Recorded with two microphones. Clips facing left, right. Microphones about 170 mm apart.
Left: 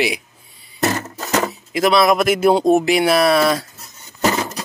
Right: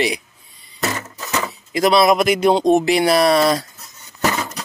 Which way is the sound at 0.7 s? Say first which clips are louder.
Left 4 dB; 45° left (ahead or behind).